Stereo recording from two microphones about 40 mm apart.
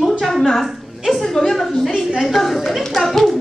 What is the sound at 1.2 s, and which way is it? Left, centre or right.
A woman's voice, centre.